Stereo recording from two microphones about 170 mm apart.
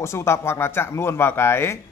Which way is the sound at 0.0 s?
15° left (ahead or behind).